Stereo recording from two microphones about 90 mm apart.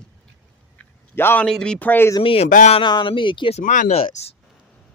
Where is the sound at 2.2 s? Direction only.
90° left.